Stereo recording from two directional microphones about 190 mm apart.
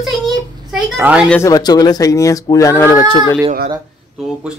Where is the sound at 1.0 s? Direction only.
5° right (ahead or behind).